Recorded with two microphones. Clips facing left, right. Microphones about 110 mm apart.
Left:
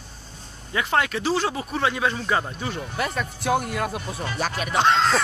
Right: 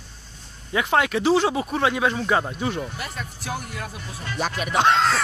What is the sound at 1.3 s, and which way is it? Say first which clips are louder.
Speech: right 6 dB; 5° right (ahead or behind).